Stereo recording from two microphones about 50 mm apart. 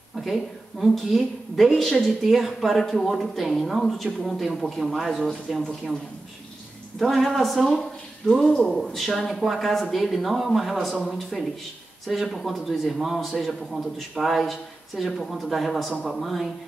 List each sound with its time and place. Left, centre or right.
0.1 s a woman's voice: centre
7.0 s a woman's voice: centre
8.5 s a man's voice: centre